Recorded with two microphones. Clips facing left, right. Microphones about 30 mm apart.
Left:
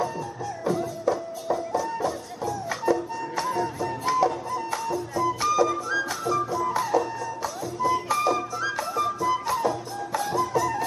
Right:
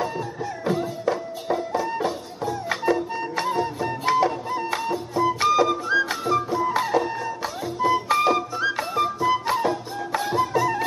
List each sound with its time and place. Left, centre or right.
0.7 s music: right